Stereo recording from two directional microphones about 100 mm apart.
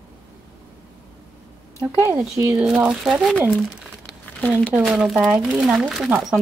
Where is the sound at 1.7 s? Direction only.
30° right (ahead or behind).